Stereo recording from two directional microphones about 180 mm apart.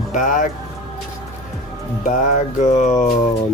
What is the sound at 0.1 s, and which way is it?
Speech, 45° left (ahead or behind).